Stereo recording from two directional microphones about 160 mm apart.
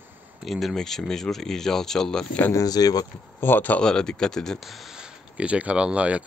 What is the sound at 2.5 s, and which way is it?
Speech, 20° left (ahead or behind).